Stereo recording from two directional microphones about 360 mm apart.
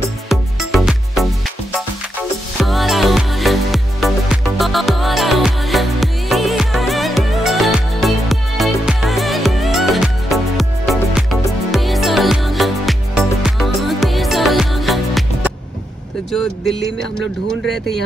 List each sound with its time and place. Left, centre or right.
0.3 s music: centre
2.6 s music: centre